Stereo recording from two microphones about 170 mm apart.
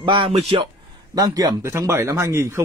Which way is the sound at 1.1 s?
20° right (ahead or behind).